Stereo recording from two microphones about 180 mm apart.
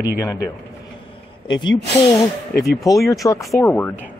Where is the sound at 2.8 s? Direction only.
20° left (ahead or behind).